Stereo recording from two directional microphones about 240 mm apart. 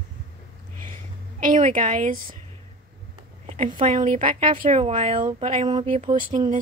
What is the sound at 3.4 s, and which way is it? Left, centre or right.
A woman's voice, right.